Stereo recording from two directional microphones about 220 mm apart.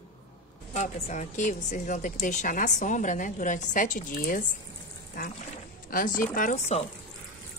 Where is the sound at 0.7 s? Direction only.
30° left (ahead or behind).